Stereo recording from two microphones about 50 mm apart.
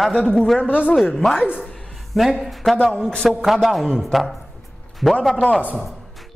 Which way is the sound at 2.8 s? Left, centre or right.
Centre.